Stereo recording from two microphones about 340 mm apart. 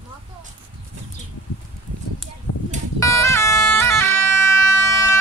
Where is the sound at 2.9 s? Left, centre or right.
Centre.